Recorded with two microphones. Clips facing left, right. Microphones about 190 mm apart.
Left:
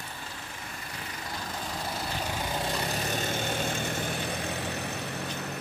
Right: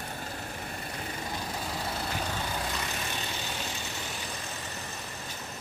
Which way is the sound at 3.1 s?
45° left (ahead or behind).